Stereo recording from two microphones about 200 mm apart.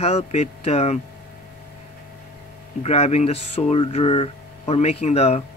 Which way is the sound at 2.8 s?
30° left (ahead or behind).